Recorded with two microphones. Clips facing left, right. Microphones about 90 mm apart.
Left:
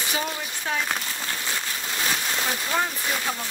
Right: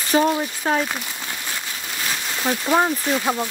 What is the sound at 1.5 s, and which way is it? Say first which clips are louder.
Rain on surface: even; 5° left (ahead or behind).